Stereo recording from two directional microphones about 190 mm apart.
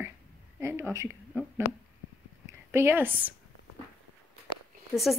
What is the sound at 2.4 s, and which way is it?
Speech, 15° right (ahead or behind).